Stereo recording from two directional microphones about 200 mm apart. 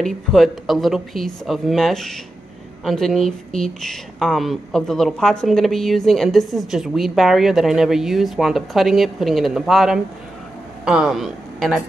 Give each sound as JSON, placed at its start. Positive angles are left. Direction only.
{"t": 0.0, "sound": "a woman's voice", "side_deg": 0}